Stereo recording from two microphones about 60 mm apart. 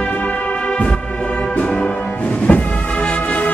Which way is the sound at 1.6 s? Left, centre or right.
Left.